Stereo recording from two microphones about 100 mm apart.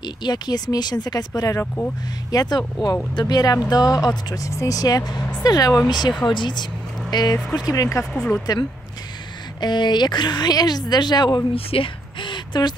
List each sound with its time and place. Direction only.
0.0 s speech: 45° left (ahead or behind)
8.0 s speech: 10° left (ahead or behind)
9.6 s speech: 45° left (ahead or behind)
11.5 s a sound: 65° left (ahead or behind); by 12.7 s 50° left (ahead or behind)